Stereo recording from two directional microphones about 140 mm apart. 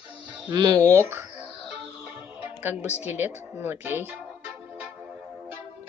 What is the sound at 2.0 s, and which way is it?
Music, 15° right (ahead or behind).